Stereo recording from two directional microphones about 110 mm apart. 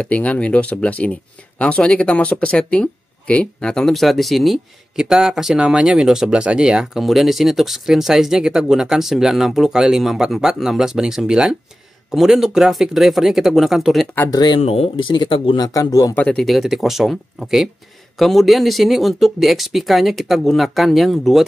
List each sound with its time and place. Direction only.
0.0 s speech: 10° left (ahead or behind)
14.3 s speech: 40° left (ahead or behind)
14.6 s speech: 65° left (ahead or behind); by 16.2 s 30° left (ahead or behind)
16.2 s speech: 10° left (ahead or behind)